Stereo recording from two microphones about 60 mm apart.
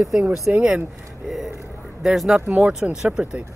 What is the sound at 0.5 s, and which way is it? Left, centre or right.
Speech, right.